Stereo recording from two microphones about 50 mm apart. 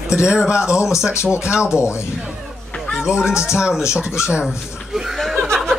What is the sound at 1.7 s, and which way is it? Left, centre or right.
Speech, left.